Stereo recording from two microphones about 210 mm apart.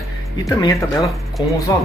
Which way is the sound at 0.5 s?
15° left (ahead or behind).